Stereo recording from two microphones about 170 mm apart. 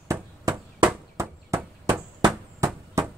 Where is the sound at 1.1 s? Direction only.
15° right (ahead or behind).